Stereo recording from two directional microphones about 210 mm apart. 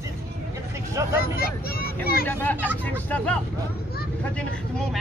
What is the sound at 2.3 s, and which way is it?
Speech, 10° left (ahead or behind).